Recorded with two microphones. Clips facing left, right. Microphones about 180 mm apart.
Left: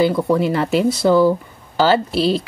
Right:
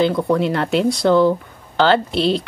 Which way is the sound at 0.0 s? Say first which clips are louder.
Left 1 dB; 5° left (ahead or behind).